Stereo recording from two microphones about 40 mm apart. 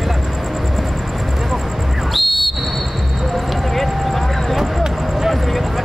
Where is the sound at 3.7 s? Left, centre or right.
Centre.